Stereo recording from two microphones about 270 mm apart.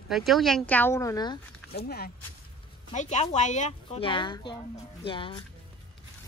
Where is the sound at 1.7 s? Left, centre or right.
Left; by 5.4 s centre.